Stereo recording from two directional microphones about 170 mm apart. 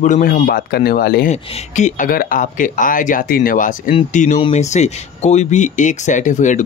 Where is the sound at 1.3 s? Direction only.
40° left (ahead or behind).